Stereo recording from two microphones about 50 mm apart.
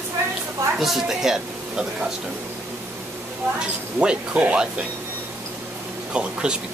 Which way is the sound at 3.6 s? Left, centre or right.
Right.